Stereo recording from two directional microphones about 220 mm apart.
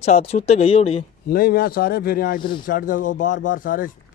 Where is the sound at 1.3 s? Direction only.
40° left (ahead or behind).